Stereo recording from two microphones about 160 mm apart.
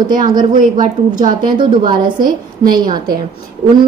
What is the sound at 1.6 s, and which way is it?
A woman's voice, 30° right (ahead or behind).